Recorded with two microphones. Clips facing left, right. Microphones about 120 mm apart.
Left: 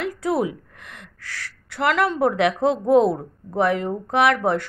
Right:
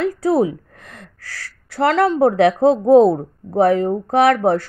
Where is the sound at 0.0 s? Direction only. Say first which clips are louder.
Right 6 dB; 35° right (ahead or behind).